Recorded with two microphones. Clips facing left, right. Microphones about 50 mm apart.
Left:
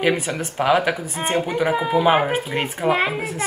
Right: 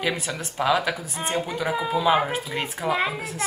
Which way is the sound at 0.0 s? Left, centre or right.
Left.